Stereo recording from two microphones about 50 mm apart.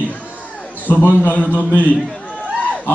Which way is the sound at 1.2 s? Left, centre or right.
Left.